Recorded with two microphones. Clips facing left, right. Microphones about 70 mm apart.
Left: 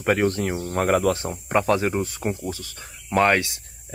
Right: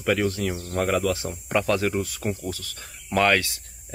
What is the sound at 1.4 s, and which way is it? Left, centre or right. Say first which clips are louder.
Speech: left 2 dB; left.